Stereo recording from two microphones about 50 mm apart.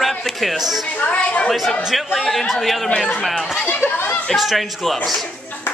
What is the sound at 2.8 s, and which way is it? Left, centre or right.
Speech, centre.